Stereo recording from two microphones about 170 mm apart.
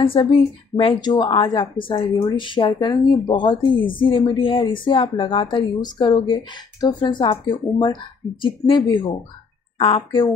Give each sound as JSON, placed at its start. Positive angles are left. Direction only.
{"t": 0.0, "sound": "a woman's voice", "side_deg": 30}